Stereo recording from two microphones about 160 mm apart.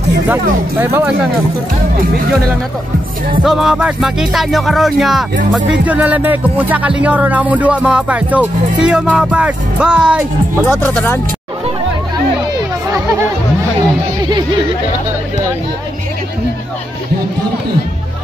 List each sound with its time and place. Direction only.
0.3 s speech: 10° right (ahead or behind)
3.4 s music: 5° right (ahead or behind)
5.7 s speech: 10° right (ahead or behind)
10.7 s speech: 10° left (ahead or behind)